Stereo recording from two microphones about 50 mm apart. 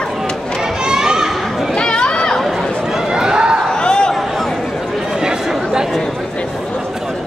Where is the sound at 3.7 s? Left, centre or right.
Centre.